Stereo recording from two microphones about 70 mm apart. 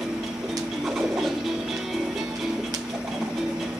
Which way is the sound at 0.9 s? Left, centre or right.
Centre.